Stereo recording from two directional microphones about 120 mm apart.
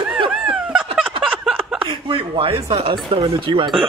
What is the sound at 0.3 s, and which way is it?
Snicker, 5° right (ahead or behind).